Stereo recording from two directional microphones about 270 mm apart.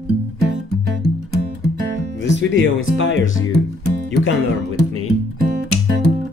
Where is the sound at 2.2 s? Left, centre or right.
Left.